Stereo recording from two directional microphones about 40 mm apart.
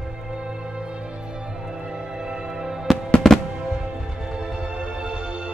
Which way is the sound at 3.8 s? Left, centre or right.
Centre.